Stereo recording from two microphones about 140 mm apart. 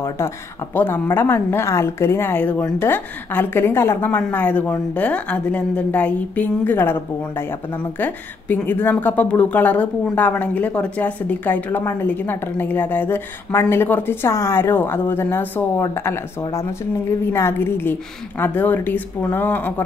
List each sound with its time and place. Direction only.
0.7 s speech: 15° left (ahead or behind)